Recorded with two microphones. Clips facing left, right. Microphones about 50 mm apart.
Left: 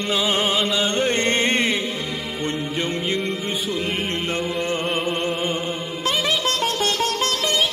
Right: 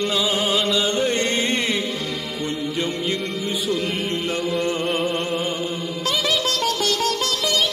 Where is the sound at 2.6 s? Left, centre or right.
Left.